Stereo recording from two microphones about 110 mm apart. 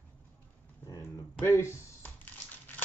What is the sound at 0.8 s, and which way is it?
Typing, 25° left (ahead or behind).